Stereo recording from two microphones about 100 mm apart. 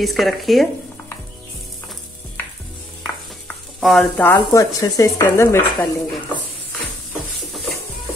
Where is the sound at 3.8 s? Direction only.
Centre (ahead or behind).